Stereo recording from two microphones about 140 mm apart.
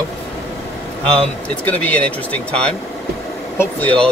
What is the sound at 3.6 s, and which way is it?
Speech, 10° left (ahead or behind).